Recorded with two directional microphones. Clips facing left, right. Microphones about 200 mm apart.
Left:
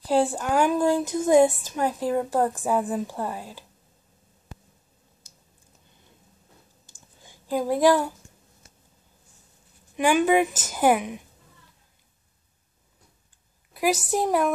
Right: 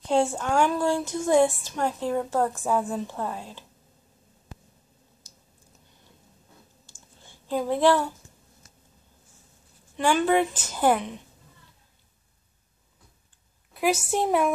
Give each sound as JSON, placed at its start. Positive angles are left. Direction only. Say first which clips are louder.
{"t": 0.1, "sound": "a woman's voice", "louder": "left 1 dB", "side_deg": 0}
{"t": 0.6, "sound": "a woman's voice", "louder": "left 2 dB", "side_deg": 15}
{"t": 1.8, "sound": "a woman's voice", "louder": "left 2 dB", "side_deg": 10}
{"t": 7.2, "sound": "a sound", "louder": "left 1 dB", "side_deg": 10}
{"t": 9.9, "sound": "a woman's voice", "louder": "left 2 dB", "side_deg": 10}
{"t": 14.1, "sound": "a woman's voice", "louder": "even", "side_deg": 0}